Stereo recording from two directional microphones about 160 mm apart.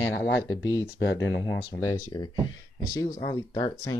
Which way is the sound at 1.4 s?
25° left (ahead or behind).